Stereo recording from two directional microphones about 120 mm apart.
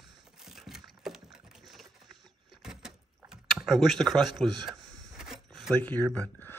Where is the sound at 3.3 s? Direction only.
5° right (ahead or behind).